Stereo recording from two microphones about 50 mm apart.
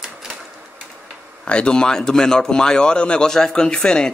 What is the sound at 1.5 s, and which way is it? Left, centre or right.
Speech, centre.